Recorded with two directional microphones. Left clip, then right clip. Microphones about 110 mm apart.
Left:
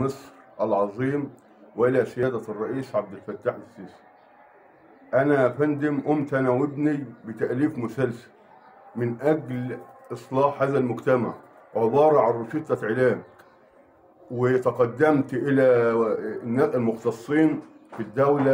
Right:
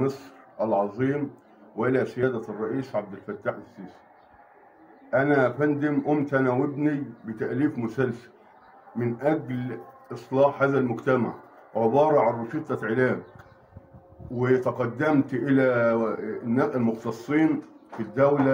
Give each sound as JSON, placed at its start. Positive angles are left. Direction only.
{"t": 0.0, "sound": "a man's voice", "side_deg": 35}
{"t": 5.1, "sound": "a man's voice", "side_deg": 40}
{"t": 14.3, "sound": "a man's voice", "side_deg": 40}